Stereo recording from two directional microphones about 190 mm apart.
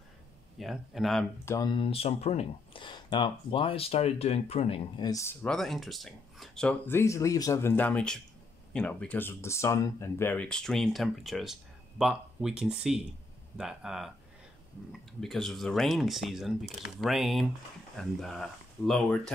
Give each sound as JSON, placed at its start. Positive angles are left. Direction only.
{"t": 0.6, "sound": "speech", "side_deg": 0}
{"t": 1.4, "sound": "speech", "side_deg": 15}
{"t": 5.4, "sound": "speech", "side_deg": 0}